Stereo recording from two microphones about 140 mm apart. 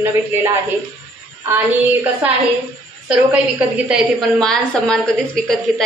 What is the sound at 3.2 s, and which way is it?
Speech, 10° right (ahead or behind).